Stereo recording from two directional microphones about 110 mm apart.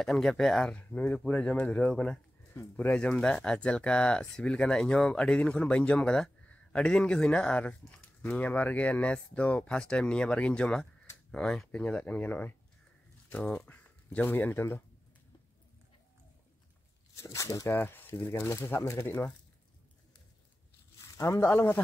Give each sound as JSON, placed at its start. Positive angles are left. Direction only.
{"t": 0.0, "sound": "speech", "side_deg": 0}
{"t": 17.2, "sound": "speech", "side_deg": 30}
{"t": 17.7, "sound": "speech", "side_deg": 20}
{"t": 21.2, "sound": "speech", "side_deg": 25}